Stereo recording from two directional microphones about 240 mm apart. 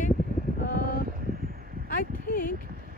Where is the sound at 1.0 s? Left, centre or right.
Right.